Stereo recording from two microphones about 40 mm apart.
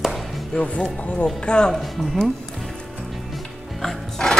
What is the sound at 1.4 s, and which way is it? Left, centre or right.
Speech, left.